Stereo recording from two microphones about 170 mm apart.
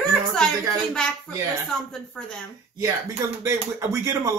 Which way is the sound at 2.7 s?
20° right (ahead or behind).